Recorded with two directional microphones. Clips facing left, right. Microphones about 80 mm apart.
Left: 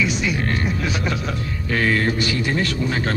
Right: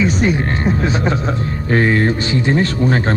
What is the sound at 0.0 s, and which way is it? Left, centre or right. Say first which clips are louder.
Speech: right 6 dB; right.